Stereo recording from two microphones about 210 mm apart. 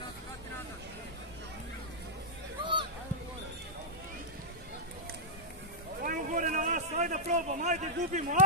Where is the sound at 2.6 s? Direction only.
25° right (ahead or behind).